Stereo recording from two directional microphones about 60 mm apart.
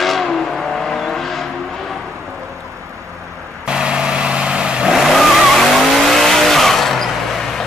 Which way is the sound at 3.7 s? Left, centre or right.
Centre.